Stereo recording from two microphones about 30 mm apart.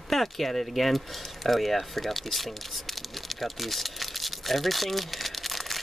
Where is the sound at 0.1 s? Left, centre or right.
Centre.